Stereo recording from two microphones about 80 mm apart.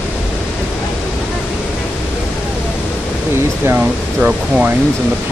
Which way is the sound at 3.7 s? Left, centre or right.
Centre.